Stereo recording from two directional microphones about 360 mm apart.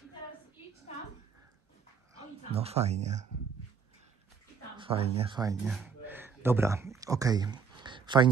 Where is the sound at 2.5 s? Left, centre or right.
Centre.